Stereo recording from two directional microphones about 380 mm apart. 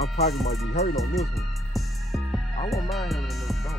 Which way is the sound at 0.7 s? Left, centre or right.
Left.